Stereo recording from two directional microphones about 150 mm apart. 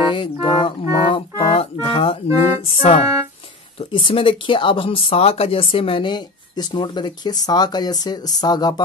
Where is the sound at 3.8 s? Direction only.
35° left (ahead or behind).